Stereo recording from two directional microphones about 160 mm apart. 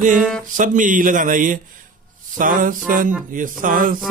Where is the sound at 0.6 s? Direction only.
55° right (ahead or behind).